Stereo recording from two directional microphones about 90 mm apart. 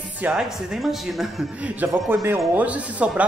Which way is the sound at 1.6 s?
20° right (ahead or behind).